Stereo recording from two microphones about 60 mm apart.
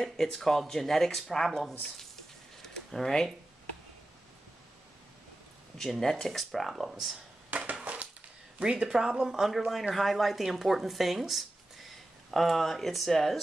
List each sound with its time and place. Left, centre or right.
0.0 s speech: centre
2.6 s a sound: centre
5.8 s speech: centre
7.8 s crushing: right
8.5 s speech: centre